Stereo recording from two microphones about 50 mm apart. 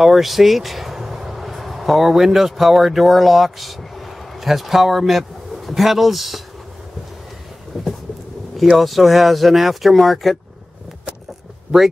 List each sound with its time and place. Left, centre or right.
0.0 s speech: centre
7.7 s vehicle: centre
8.7 s speech: centre